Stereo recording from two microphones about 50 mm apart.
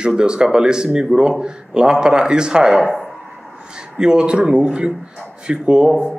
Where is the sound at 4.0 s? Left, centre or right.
Centre.